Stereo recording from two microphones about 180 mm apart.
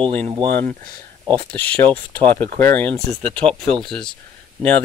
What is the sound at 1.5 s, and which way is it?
Speech, 10° left (ahead or behind).